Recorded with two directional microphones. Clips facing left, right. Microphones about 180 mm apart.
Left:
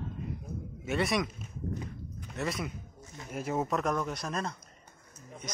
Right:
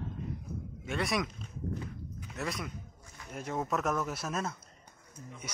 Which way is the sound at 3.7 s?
5° right (ahead or behind).